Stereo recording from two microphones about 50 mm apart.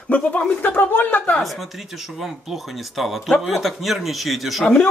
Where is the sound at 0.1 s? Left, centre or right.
Left.